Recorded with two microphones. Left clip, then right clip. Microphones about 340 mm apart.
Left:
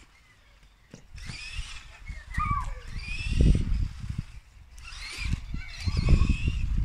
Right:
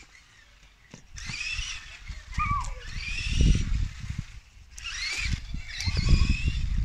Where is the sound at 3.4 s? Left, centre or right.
Left.